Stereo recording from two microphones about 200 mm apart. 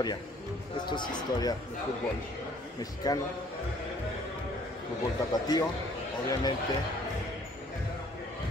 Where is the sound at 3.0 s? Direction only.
20° left (ahead or behind).